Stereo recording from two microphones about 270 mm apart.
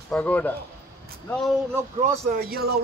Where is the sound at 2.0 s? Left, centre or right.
Right.